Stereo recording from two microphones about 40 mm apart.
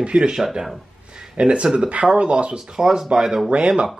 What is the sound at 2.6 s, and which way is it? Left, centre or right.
Speech, centre.